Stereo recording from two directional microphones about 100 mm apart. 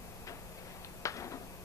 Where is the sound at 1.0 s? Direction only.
30° left (ahead or behind).